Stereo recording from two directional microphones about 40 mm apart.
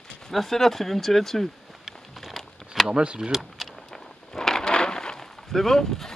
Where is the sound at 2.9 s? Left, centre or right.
Right.